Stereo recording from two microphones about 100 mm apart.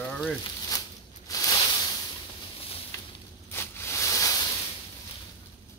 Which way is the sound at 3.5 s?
25° left (ahead or behind).